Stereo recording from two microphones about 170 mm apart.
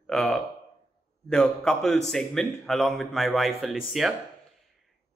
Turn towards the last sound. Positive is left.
turn(degrees=0)  # may be behind; listen again after turning